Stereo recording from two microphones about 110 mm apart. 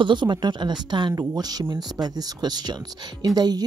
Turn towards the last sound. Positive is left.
turn(degrees=-40)  # may be behind; listen again after turning